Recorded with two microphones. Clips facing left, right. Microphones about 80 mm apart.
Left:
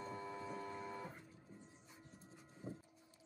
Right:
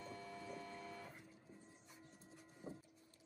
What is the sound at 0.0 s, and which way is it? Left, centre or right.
Printer, left.